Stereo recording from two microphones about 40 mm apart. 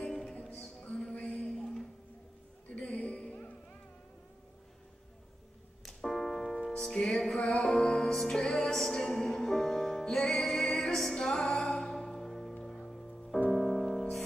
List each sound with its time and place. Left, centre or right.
0.0 s music: centre
1.1 s a sound: left
1.5 s a sound: centre
2.9 s music: left
5.9 s music: centre
6.9 s music: left
7.7 s music: centre
11.9 s music: centre